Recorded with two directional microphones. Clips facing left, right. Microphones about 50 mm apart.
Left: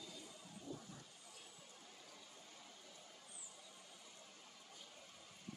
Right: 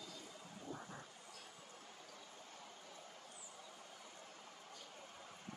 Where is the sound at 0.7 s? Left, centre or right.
Right.